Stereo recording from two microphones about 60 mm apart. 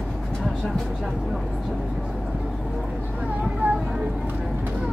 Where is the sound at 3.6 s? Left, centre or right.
Right.